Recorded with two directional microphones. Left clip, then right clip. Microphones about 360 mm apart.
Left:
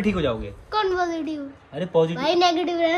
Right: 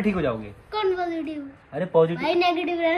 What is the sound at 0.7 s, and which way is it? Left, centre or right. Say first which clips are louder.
Speech: left 2 dB; centre.